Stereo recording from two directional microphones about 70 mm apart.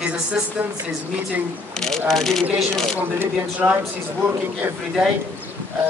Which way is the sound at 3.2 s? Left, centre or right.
Right.